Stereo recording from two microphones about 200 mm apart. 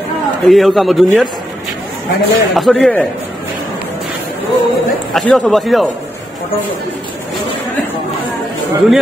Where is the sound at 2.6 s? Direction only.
Centre (ahead or behind).